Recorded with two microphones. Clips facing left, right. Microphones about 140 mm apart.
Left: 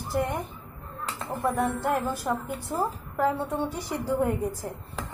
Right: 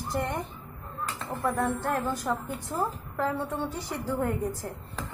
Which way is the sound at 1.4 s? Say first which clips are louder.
Left 2 dB; 10° left (ahead or behind).